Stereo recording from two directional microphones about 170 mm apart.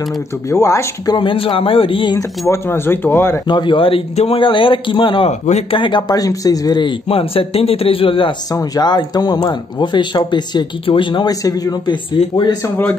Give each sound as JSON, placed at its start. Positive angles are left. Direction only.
{"t": 0.5, "sound": "speech", "side_deg": 15}
{"t": 2.5, "sound": "speech", "side_deg": 15}